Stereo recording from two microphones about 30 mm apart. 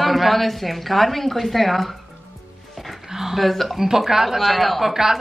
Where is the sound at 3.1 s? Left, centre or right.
Centre.